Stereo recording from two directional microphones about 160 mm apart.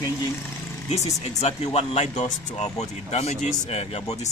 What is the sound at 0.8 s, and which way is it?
Speech, 40° left (ahead or behind).